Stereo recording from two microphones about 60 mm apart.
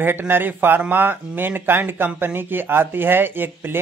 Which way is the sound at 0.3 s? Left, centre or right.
Right.